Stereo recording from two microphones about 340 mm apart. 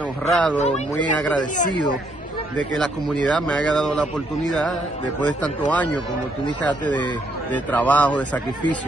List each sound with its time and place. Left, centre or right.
0.3 s speech: centre
1.6 s speech: centre
2.5 s speech: centre